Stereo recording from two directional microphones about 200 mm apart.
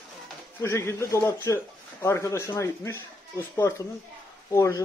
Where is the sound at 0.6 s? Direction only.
15° left (ahead or behind).